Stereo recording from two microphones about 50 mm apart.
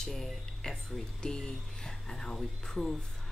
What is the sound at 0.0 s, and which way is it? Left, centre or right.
Speech, centre.